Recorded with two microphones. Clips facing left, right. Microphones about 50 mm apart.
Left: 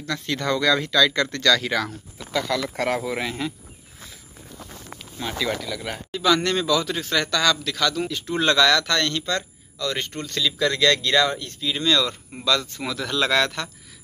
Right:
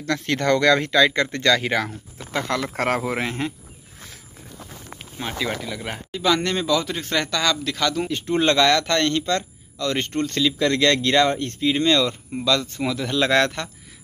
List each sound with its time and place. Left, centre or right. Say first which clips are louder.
0.2 s speech: right 4 dB; right
4.9 s speech: even; right
12.8 s speech: right 2 dB; centre
13.3 s speech: right 3 dB; right